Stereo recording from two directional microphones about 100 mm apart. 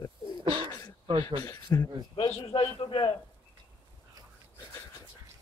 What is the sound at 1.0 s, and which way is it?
Speech, 55° right (ahead or behind).